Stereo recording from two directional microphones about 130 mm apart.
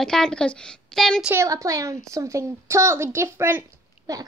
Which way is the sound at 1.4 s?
25° right (ahead or behind).